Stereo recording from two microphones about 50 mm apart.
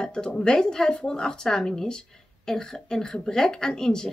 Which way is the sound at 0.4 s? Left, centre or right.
Centre.